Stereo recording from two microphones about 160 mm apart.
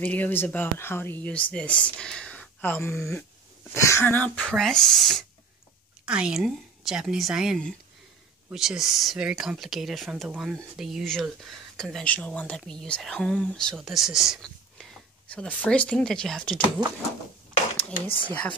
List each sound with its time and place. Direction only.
0.0 s speech: 10° left (ahead or behind)
18.0 s speech: 35° left (ahead or behind)